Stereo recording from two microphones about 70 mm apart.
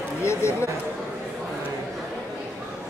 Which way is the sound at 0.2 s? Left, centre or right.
Left.